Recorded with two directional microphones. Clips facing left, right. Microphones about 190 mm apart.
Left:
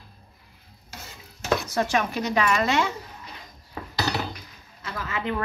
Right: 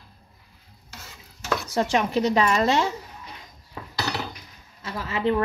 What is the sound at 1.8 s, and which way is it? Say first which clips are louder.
Speech: right 3 dB; 25° right (ahead or behind).